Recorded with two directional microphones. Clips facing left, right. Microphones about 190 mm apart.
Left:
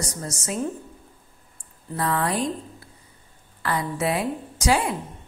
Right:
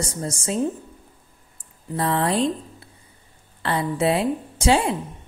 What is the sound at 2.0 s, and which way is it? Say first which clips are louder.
A woman's voice: right 3 dB; 30° right (ahead or behind).